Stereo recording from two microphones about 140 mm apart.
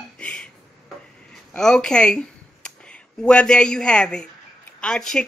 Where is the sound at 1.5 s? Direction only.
5° left (ahead or behind).